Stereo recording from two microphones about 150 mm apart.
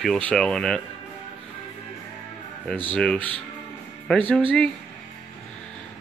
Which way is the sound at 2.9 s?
5° left (ahead or behind).